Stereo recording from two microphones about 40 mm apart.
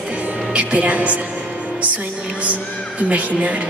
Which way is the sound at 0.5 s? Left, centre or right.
Right.